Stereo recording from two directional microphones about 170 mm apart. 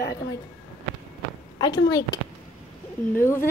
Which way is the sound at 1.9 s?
20° left (ahead or behind).